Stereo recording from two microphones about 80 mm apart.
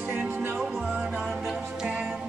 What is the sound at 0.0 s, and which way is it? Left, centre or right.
Music, centre.